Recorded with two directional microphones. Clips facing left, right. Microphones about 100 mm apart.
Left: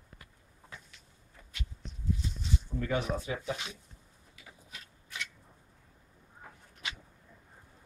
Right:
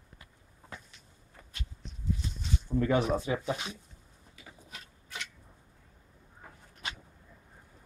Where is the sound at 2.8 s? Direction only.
35° right (ahead or behind).